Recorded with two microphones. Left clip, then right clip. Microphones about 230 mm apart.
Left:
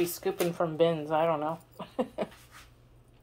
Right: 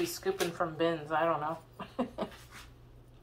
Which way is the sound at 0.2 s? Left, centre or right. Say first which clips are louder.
Left 3 dB; left.